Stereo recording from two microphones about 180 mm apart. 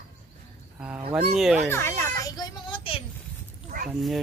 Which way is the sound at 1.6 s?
15° left (ahead or behind).